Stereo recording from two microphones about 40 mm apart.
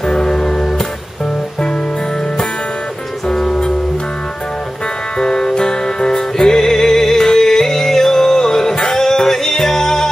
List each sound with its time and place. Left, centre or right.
0.0 s music: centre
3.3 s music: centre
5.2 s music: centre